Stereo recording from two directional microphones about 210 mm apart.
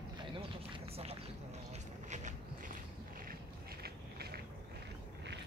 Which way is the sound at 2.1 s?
35° right (ahead or behind).